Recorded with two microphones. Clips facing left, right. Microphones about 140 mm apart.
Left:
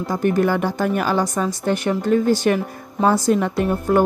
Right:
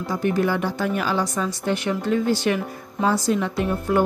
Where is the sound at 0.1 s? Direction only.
50° left (ahead or behind).